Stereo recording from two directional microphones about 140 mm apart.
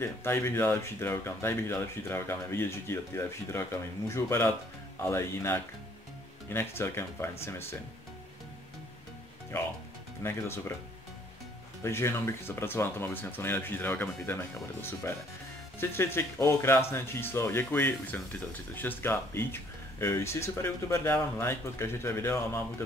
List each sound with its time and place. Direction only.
0.0 s speech: 15° left (ahead or behind)
10.2 s speech: 20° left (ahead or behind)
11.8 s speech: 20° left (ahead or behind)